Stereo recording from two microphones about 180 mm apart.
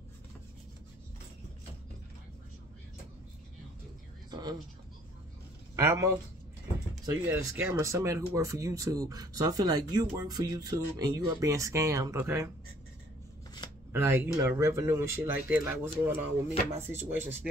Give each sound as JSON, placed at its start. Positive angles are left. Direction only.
{"t": 4.3, "sound": "a sound", "side_deg": -25}
{"t": 5.8, "sound": "speech", "side_deg": -15}
{"t": 7.2, "sound": "speech", "side_deg": -15}
{"t": 13.9, "sound": "speech", "side_deg": -15}